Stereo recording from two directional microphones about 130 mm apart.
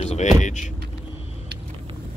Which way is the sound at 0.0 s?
60° left (ahead or behind).